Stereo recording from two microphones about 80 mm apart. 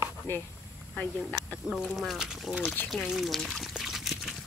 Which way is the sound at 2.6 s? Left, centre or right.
Left.